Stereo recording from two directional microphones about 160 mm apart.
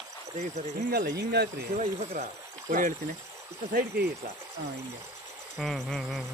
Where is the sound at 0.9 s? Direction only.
70° right (ahead or behind).